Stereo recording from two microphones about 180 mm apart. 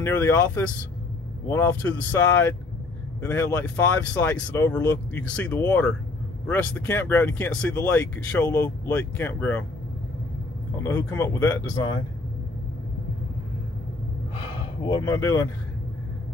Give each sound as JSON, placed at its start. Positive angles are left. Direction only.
{"t": 0.0, "sound": "speech", "side_deg": 10}
{"t": 10.8, "sound": "speech", "side_deg": 15}
{"t": 14.9, "sound": "speech", "side_deg": 20}